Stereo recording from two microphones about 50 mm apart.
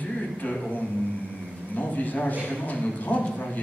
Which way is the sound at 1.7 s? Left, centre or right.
Left.